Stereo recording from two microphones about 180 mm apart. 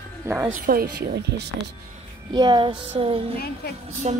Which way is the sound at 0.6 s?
55° right (ahead or behind).